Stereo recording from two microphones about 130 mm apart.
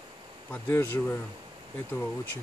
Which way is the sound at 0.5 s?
15° left (ahead or behind).